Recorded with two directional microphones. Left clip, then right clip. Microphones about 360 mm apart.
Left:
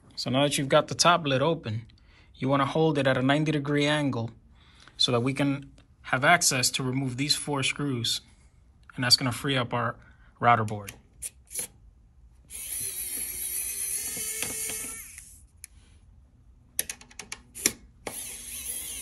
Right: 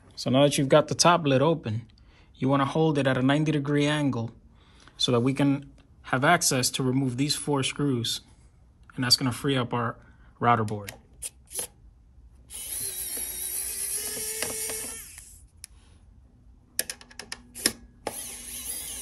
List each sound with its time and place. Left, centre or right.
0.1 s speech: centre
12.7 s ratchet: centre
14.0 s a sound: centre